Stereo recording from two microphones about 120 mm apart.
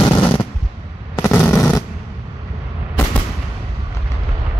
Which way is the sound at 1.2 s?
15° left (ahead or behind).